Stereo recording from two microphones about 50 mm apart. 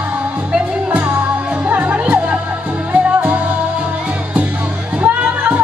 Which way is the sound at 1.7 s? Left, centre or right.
Right.